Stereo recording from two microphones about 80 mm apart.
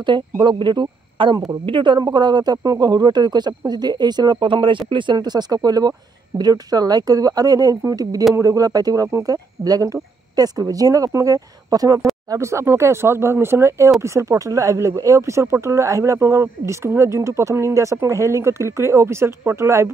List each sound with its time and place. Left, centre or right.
0.0 s speech: right
2.0 s speech: right
12.3 s speech: right